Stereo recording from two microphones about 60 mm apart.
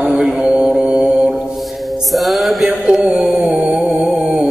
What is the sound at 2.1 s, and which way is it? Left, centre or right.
Music, centre.